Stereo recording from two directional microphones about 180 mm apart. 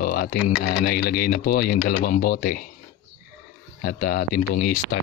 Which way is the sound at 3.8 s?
55° left (ahead or behind).